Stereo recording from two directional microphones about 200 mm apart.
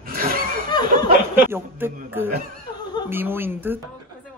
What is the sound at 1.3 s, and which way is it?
A man's voice, 10° right (ahead or behind).